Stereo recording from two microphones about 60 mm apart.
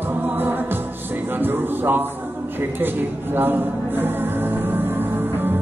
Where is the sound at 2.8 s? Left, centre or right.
Right.